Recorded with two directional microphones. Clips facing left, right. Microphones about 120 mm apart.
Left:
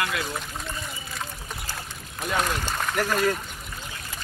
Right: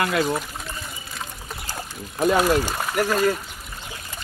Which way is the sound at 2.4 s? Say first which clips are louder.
Right 7 dB; 10° right (ahead or behind).